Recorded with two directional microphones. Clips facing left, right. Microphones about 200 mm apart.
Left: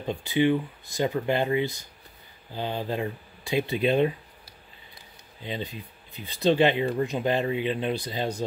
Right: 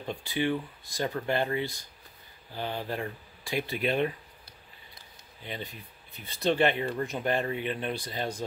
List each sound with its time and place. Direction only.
0.0 s speech: 20° left (ahead or behind)
5.4 s speech: 20° left (ahead or behind)